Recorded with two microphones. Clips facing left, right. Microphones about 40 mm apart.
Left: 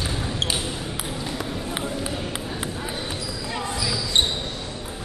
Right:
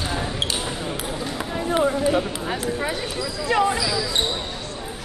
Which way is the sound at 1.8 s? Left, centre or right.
Right.